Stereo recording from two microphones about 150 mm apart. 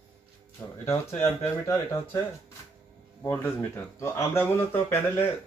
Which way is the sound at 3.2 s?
15° left (ahead or behind).